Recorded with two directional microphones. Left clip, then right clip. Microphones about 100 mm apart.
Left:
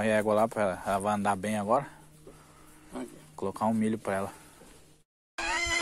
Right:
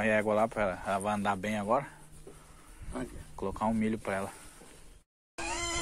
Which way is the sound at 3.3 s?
40° left (ahead or behind).